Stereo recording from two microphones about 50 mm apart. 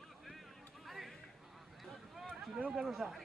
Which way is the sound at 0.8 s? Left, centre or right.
Centre.